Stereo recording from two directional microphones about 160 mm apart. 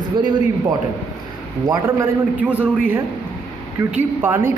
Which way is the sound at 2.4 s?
10° right (ahead or behind).